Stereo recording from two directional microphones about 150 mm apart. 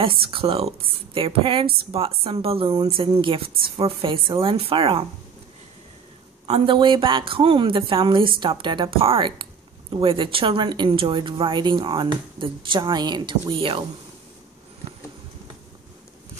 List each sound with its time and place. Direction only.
0.0 s speech: 35° right (ahead or behind)
6.4 s speech: 40° right (ahead or behind)